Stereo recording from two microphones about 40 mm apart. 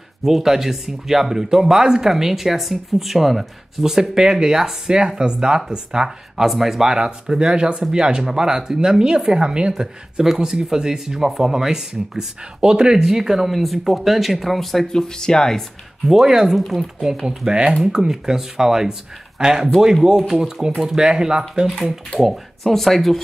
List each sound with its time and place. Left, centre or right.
0.2 s speech: centre; by 9.8 s right
9.8 s speech: centre
16.1 s speech: centre
16.5 s speech: centre
17.2 s speech: right
22.2 s speech: centre